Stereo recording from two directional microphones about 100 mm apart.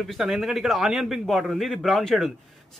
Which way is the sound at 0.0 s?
Centre (ahead or behind).